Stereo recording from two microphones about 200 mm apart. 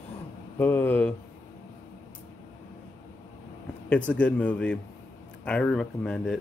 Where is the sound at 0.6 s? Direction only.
10° left (ahead or behind).